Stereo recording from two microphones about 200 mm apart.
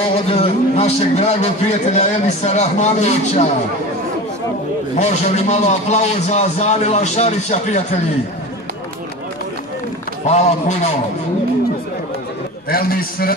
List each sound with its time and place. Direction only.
0.1 s a man's voice: 30° left (ahead or behind)
4.9 s a man's voice: 35° left (ahead or behind)
10.2 s a man's voice: 35° left (ahead or behind)
12.6 s a man's voice: 50° left (ahead or behind)